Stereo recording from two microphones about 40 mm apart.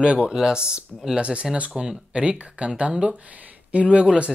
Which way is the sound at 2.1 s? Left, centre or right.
Right.